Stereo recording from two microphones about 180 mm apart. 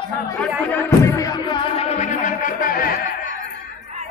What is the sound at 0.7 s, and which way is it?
Music, 15° left (ahead or behind).